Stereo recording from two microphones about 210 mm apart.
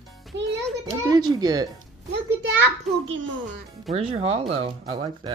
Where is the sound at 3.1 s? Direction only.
65° right (ahead or behind).